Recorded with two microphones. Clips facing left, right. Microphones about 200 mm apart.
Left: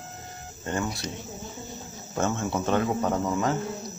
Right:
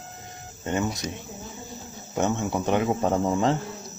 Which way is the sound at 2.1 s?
15° right (ahead or behind).